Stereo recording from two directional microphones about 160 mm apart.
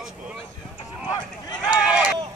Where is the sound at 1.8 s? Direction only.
5° right (ahead or behind).